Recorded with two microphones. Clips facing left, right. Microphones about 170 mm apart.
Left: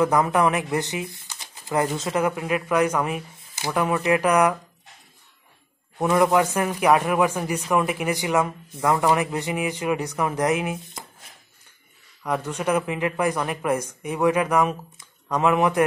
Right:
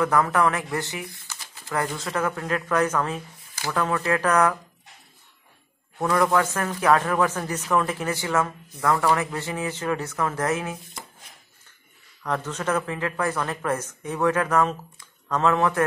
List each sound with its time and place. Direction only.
0.0 s speech: 20° left (ahead or behind)
5.9 s speech: 20° left (ahead or behind)
12.2 s speech: 10° left (ahead or behind)